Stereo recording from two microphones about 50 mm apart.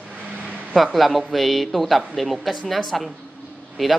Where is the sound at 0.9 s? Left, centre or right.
Centre.